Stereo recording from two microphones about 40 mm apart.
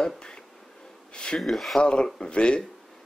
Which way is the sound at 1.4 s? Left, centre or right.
Centre.